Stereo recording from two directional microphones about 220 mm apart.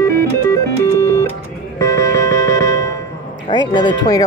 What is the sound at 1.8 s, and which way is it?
Music, 15° left (ahead or behind).